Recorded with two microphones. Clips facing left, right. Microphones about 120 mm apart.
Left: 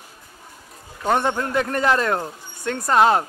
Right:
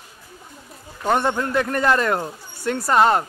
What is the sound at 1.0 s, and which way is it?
Speech, centre (ahead or behind).